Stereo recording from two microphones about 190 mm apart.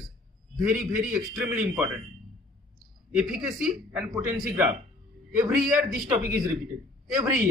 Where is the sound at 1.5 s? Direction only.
15° right (ahead or behind).